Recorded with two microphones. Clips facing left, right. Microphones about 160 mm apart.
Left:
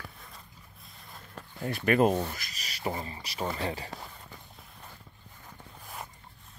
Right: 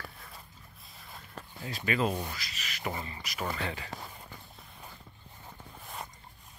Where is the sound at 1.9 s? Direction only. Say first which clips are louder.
Left 6 dB; 55° left (ahead or behind).